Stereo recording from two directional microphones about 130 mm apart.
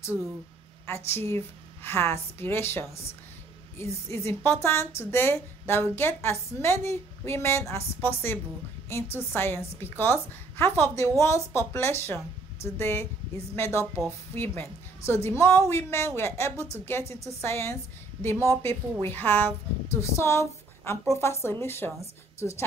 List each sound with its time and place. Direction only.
0.8 s a woman's voice: 20° left (ahead or behind)